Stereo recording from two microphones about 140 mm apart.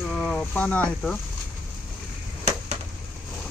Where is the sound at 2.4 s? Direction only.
50° right (ahead or behind).